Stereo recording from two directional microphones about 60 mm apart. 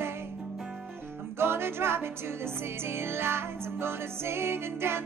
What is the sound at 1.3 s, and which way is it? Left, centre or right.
Music, right.